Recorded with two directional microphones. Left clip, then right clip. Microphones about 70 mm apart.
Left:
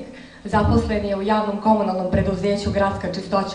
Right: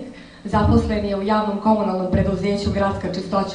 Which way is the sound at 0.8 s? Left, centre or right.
Centre.